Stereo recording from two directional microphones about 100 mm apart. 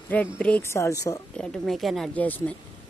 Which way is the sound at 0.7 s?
30° left (ahead or behind).